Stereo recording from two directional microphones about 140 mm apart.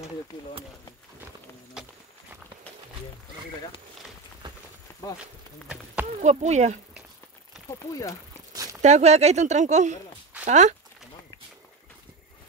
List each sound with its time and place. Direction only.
1.8 s walk: 5° right (ahead or behind)
5.2 s insect: 10° right (ahead or behind)
6.1 s speech: 55° right (ahead or behind)
7.5 s a sound: 5° right (ahead or behind)
8.8 s speech: 55° right (ahead or behind)